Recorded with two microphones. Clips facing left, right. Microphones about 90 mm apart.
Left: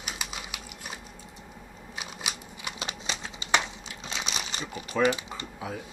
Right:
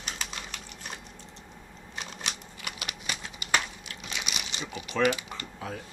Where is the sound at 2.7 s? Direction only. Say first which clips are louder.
Left 2 dB; 25° left (ahead or behind).